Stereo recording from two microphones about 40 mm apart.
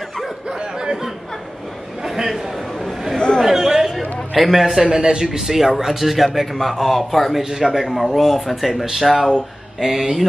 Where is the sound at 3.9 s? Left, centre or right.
Centre.